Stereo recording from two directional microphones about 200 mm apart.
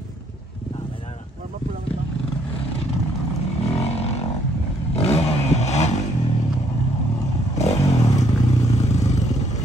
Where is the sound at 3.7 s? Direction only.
30° left (ahead or behind).